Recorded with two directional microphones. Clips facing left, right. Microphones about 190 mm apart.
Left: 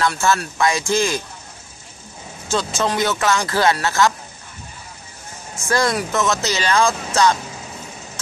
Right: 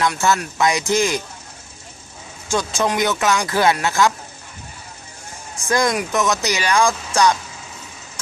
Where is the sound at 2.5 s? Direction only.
15° right (ahead or behind).